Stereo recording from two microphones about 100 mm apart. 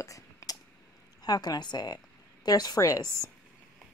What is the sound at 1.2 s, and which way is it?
A woman's voice, 40° left (ahead or behind).